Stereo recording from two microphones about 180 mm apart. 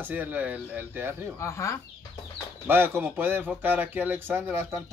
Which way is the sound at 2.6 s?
10° right (ahead or behind).